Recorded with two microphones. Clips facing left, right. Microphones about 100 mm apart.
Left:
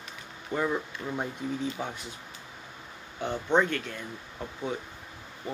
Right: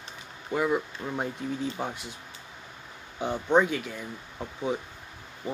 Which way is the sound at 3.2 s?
10° right (ahead or behind).